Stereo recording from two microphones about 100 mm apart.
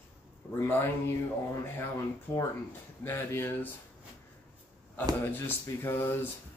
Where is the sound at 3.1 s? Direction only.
20° left (ahead or behind).